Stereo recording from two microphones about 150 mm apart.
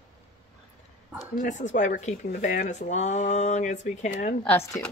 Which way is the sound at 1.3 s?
55° left (ahead or behind).